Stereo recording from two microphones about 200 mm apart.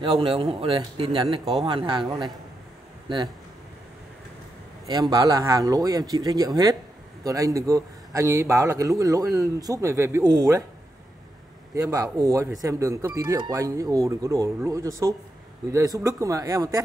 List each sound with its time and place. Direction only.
0.0 s a man's voice: 25° right (ahead or behind)
5.1 s speech: 15° right (ahead or behind)
11.7 s speech: 15° right (ahead or behind)